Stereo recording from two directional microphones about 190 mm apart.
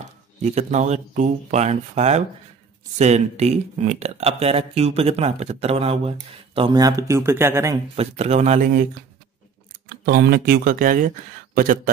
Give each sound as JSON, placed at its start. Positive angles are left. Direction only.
{"t": 0.4, "sound": "speech", "side_deg": -35}
{"t": 7.9, "sound": "speech", "side_deg": -35}
{"t": 10.0, "sound": "speech", "side_deg": -55}